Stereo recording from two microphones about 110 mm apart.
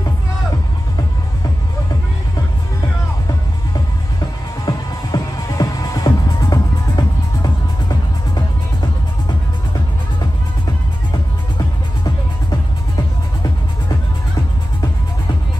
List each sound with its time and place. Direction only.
4.6 s music: 35° left (ahead or behind)
11.5 s music: 35° left (ahead or behind)